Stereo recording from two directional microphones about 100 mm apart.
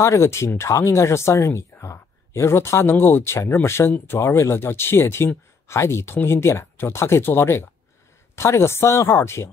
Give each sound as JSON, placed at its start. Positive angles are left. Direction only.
{"t": 0.0, "sound": "speech", "side_deg": 30}